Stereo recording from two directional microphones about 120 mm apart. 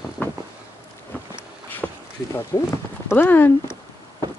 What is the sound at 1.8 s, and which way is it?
Boat, 5° left (ahead or behind).